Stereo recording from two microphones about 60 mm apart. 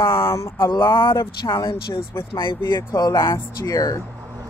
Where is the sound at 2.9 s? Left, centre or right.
Left.